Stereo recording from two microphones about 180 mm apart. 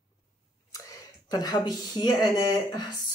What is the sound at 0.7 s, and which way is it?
Speech, 20° left (ahead or behind).